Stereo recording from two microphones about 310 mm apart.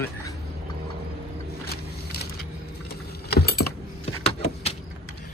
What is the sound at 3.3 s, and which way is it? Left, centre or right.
Keys jangling, left.